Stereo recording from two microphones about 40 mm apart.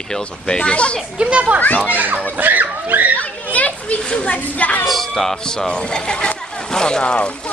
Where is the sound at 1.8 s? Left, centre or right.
Right.